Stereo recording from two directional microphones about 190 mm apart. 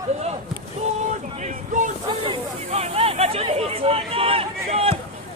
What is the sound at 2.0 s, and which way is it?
Speech, 25° right (ahead or behind).